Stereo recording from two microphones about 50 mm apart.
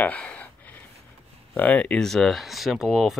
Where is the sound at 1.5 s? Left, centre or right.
Left.